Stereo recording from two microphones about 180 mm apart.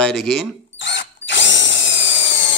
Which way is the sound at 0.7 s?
80° left.